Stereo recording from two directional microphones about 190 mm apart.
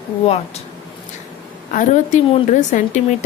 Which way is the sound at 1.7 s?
40° left (ahead or behind).